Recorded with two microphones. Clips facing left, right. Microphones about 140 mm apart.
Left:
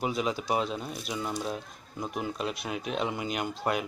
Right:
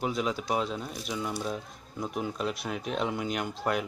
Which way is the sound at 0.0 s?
5° left (ahead or behind).